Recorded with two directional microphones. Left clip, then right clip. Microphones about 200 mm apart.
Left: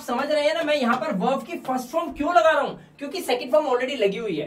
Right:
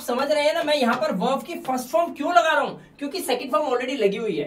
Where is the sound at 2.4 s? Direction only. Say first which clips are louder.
Left 2 dB; 10° left (ahead or behind).